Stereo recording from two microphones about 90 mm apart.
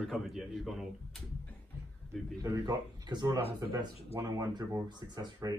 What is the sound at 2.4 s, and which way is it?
Speech, 45° right (ahead or behind).